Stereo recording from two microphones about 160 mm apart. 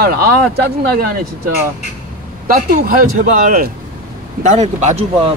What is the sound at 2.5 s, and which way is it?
Speech, 55° right (ahead or behind).